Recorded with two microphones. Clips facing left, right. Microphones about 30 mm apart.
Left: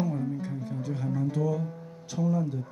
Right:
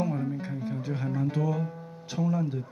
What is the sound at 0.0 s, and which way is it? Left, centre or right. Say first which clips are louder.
Music: even; right.